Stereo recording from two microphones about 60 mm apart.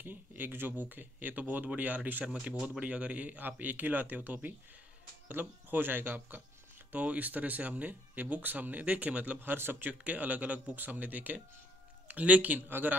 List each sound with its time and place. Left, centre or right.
0.0 s speech: right
2.2 s speech: centre
9.4 s speech: right